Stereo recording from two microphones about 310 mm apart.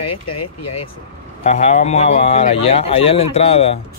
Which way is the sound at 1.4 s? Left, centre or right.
Left.